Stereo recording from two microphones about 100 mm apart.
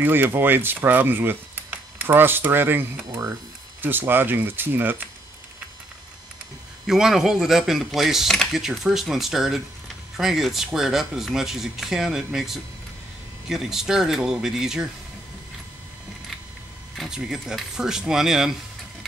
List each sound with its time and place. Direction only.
0.0 s speech: 20° right (ahead or behind)
6.9 s speech: 5° right (ahead or behind)
16.9 s speech: centre (ahead or behind)